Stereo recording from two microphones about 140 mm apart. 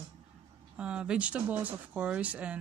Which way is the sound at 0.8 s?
5° right (ahead or behind).